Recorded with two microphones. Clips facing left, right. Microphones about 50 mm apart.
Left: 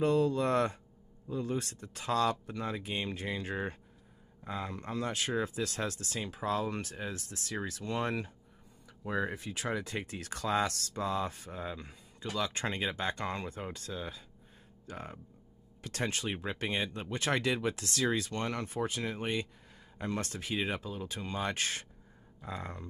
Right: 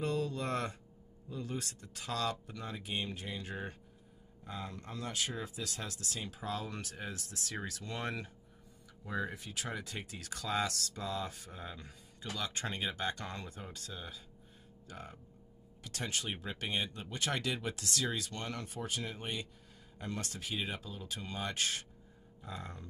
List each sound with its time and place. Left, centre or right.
0.0 s speech: left